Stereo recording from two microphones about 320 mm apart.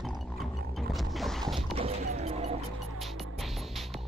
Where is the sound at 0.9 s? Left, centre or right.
Centre.